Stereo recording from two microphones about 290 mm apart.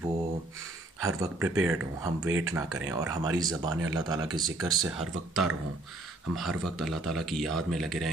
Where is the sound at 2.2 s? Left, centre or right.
Right.